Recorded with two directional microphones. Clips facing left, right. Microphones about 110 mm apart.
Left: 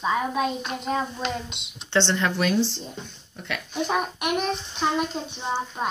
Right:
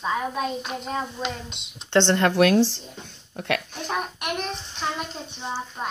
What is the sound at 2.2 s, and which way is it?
Speech, 60° right (ahead or behind).